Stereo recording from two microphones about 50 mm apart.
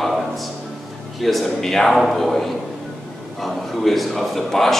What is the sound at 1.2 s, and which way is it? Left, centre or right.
A man's voice, centre.